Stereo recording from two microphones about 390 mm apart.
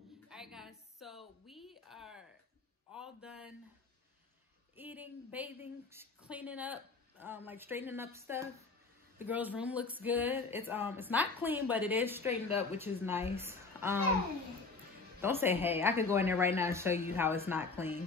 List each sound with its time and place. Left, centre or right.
0.3 s a sound: centre
4.7 s a woman's voice: centre
15.2 s a woman's voice: centre